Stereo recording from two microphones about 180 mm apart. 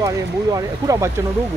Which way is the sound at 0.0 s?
20° right (ahead or behind).